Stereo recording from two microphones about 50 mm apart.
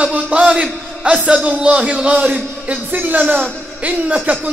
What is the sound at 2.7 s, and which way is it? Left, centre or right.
A man's voice, right.